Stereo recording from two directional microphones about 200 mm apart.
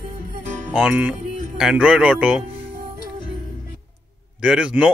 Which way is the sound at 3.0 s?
25° left (ahead or behind).